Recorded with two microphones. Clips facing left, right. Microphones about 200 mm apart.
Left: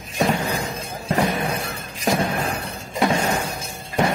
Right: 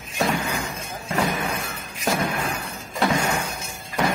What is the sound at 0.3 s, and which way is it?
Music, 35° left (ahead or behind).